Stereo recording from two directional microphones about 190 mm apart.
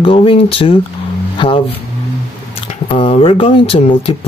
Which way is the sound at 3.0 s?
30° left (ahead or behind).